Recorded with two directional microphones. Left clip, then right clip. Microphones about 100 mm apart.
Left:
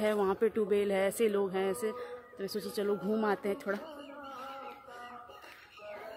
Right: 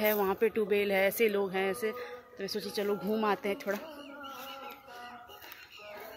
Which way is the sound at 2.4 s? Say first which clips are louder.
Right 1 dB; 45° left (ahead or behind).